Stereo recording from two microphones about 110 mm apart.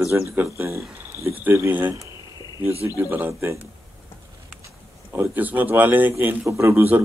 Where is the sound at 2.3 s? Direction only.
40° left (ahead or behind).